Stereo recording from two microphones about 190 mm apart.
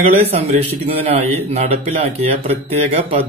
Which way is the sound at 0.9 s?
35° right (ahead or behind).